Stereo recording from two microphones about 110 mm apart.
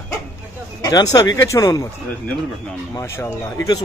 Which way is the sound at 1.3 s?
30° left (ahead or behind).